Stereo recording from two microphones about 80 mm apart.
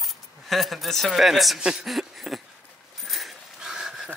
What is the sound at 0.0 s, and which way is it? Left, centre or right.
Speech, centre.